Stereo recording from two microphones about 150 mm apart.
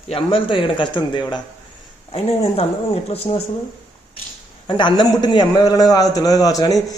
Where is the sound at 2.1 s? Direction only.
40° left (ahead or behind).